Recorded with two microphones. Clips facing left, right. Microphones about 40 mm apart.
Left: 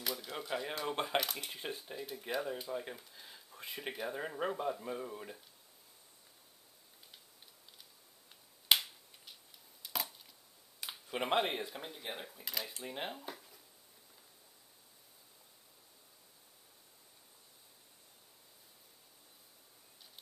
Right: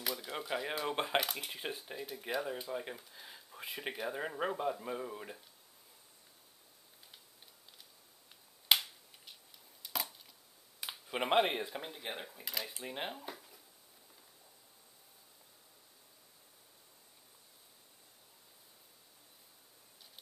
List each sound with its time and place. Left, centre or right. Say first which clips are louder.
0.0 s speech: right 1 dB; centre
8.6 s a sound: even; centre
10.8 s speech: right 1 dB; centre